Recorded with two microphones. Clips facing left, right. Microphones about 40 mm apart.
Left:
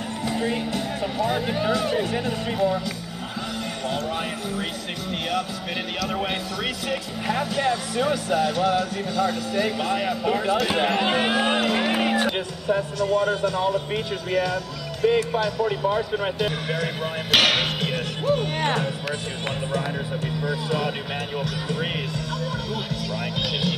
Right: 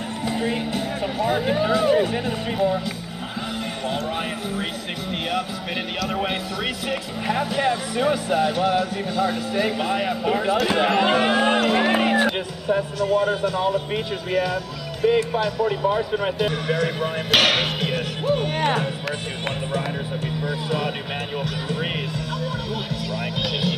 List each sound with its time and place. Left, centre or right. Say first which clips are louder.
0.3 s speech: right 1 dB; centre
6.0 s speech: right 2 dB; centre
20.4 s speech: even; right
21.4 s speech: even; centre